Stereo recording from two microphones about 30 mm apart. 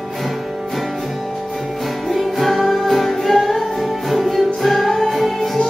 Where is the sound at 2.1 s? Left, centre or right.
Centre.